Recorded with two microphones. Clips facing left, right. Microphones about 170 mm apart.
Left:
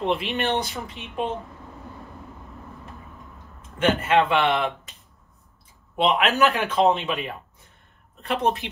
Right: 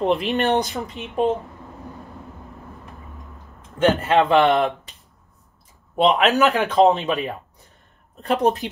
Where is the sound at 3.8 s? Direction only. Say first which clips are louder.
Right 3 dB; 35° right (ahead or behind).